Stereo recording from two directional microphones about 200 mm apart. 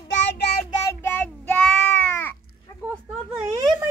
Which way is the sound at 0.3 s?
55° left (ahead or behind).